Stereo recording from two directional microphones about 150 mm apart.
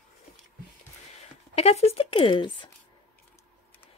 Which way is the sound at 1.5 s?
45° left (ahead or behind).